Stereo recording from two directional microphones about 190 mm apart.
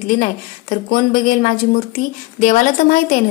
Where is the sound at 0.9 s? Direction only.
50° left (ahead or behind).